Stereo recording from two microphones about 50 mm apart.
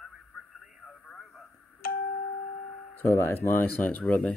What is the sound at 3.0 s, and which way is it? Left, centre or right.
Speech, left.